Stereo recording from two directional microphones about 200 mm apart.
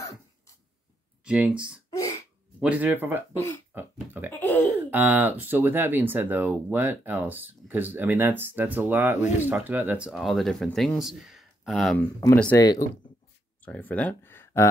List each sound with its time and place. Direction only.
1.2 s speech: 5° right (ahead or behind)
1.9 s a sound: 15° left (ahead or behind)
2.6 s speech: 5° right (ahead or behind)
3.3 s speech: 10° left (ahead or behind)
3.7 s speech: 10° right (ahead or behind)
4.3 s speech: 10° left (ahead or behind)
4.9 s speech: 10° right (ahead or behind); by 14.7 s 10° left (ahead or behind)